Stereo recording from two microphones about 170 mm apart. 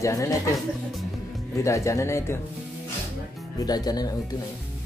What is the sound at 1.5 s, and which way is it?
Speech, 15° left (ahead or behind).